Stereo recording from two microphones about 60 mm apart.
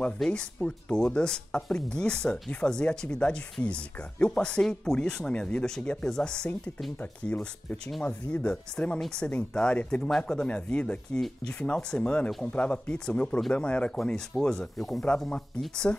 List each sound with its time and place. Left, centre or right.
0.3 s speech: centre